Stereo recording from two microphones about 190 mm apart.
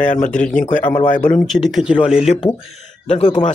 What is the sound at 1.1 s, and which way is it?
Speech, 10° left (ahead or behind).